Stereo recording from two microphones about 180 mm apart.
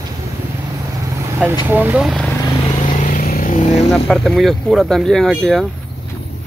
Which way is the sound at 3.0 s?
50° left (ahead or behind).